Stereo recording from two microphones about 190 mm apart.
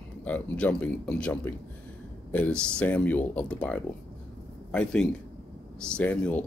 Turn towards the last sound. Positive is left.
turn(degrees=10)  # may be behind; listen again after turning